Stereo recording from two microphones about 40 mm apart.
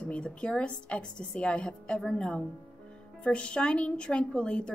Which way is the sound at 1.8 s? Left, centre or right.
Centre.